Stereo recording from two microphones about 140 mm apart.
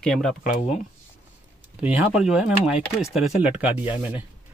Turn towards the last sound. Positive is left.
turn(degrees=-15)  # may be behind; listen again after turning